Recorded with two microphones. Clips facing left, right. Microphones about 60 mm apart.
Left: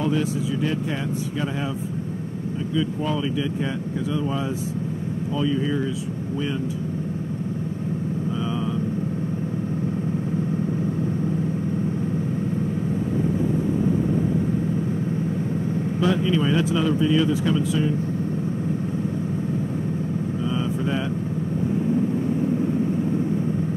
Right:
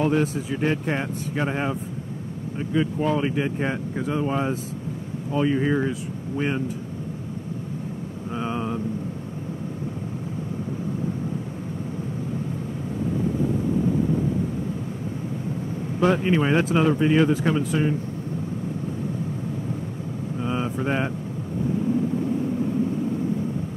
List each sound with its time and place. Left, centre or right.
0.0 s speech: right
5.4 s speech: right
16.0 s speech: right